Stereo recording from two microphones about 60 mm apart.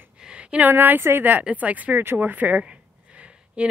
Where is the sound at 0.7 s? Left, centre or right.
Right.